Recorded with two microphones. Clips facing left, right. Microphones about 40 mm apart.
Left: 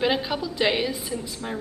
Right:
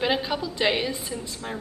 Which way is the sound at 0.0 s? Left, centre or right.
Centre.